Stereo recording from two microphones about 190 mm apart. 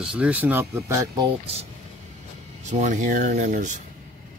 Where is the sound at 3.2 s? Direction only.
50° right (ahead or behind).